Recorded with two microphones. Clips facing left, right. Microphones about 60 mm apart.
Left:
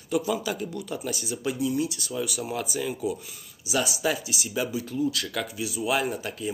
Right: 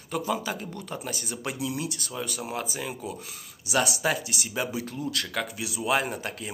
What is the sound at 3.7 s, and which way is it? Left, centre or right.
Speech, right.